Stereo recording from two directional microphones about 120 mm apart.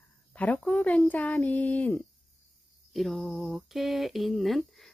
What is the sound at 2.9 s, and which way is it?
Speech, centre (ahead or behind).